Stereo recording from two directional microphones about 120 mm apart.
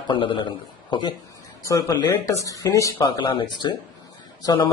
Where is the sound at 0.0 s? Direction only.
40° left (ahead or behind).